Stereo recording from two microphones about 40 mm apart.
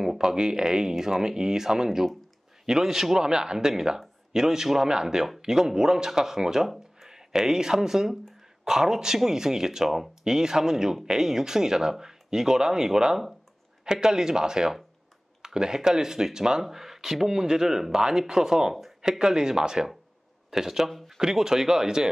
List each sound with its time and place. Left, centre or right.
0.0 s speech: centre